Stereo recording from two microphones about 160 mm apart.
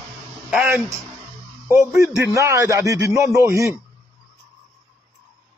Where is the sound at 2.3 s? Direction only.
20° right (ahead or behind).